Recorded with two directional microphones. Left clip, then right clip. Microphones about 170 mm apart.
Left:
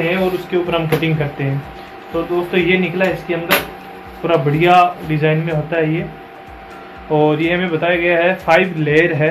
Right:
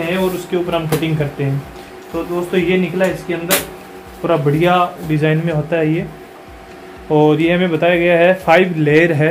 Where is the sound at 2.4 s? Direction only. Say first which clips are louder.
Right 1 dB; 55° right (ahead or behind).